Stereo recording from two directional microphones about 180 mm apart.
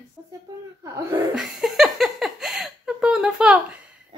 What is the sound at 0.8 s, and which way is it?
Speech, 15° right (ahead or behind).